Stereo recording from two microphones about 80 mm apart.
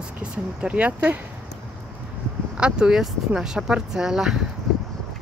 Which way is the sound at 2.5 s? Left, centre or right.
Centre.